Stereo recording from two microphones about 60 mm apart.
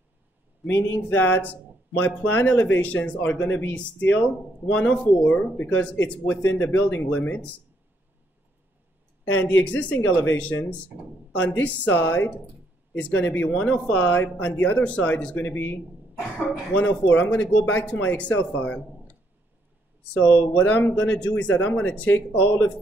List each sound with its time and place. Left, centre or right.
1.0 s speech: left
9.4 s speech: left
20.2 s speech: left